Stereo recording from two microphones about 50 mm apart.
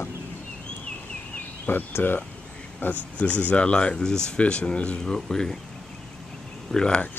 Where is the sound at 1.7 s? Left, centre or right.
Left.